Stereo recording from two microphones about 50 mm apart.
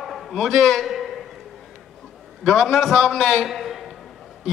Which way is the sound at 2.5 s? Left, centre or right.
Centre.